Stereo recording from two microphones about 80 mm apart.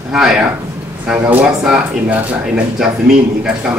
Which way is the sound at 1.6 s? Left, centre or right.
Centre.